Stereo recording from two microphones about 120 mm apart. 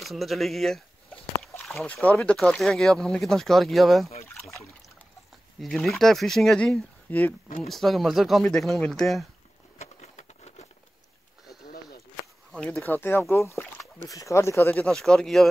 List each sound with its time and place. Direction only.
0.0 s speech: centre (ahead or behind)
4.3 s trickle: 10° left (ahead or behind)
5.6 s speech: centre (ahead or behind)
7.6 s speech: centre (ahead or behind)
9.8 s a sound: 65° left (ahead or behind)
12.7 s speech: 15° left (ahead or behind)